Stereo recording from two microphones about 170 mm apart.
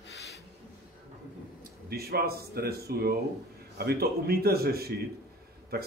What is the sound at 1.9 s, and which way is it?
Speech, 65° right (ahead or behind).